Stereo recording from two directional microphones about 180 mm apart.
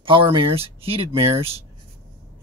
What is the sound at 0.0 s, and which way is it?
Speech, 30° right (ahead or behind).